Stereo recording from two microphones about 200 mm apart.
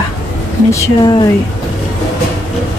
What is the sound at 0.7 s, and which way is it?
Speech, 20° left (ahead or behind).